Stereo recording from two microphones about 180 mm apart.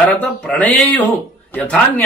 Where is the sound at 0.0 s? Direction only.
10° left (ahead or behind).